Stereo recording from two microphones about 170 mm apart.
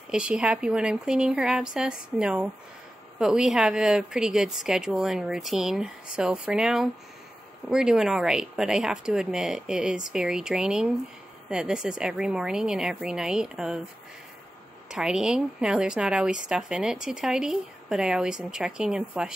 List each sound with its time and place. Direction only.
0.1 s a woman's voice: 5° right (ahead or behind)
14.9 s a woman's voice: 5° right (ahead or behind)